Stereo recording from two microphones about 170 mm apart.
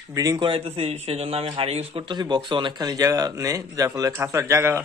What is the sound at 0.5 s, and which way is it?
Speech, 35° right (ahead or behind).